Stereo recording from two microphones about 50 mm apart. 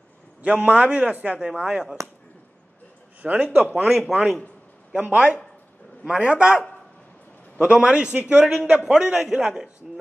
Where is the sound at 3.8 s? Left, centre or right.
Centre.